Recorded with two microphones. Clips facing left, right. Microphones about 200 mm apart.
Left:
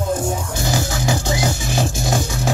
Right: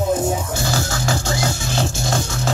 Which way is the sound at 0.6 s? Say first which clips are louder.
Left 1 dB; 15° left (ahead or behind).